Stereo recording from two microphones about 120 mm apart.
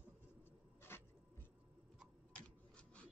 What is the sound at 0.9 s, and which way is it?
Writing, 20° left (ahead or behind).